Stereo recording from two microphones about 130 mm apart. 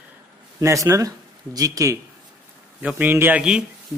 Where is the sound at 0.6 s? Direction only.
25° right (ahead or behind).